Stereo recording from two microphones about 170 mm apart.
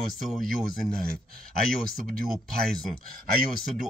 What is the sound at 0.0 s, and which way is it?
Speech, centre (ahead or behind).